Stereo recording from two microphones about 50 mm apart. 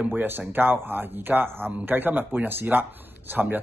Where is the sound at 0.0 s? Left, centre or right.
Right.